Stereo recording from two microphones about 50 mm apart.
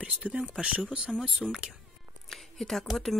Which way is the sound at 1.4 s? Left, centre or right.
Left.